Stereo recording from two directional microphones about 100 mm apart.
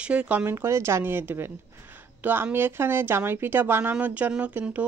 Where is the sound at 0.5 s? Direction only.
25° right (ahead or behind).